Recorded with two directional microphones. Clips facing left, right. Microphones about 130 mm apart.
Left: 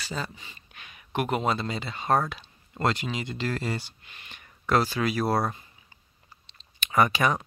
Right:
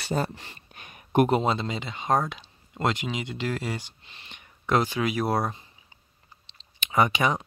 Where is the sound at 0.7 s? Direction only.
45° right (ahead or behind).